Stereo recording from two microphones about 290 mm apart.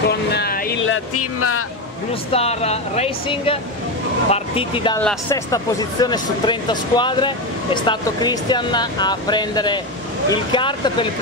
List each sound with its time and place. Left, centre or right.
0.1 s vehicle: left
2.3 s speech: left